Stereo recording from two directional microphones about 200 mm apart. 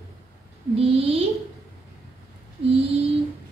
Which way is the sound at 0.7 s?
30° right (ahead or behind).